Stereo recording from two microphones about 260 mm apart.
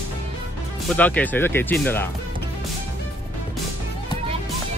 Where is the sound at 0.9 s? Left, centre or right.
Centre.